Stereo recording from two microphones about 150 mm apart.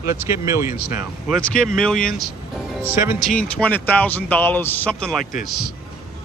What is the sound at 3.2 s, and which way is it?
Speech, 5° left (ahead or behind).